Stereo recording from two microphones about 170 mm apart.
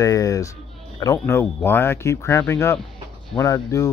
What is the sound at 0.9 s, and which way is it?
Speech, 20° left (ahead or behind).